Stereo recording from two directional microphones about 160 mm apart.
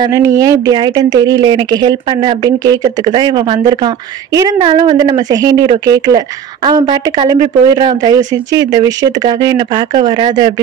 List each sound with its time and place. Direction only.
0.0 s a woman's voice: 20° right (ahead or behind)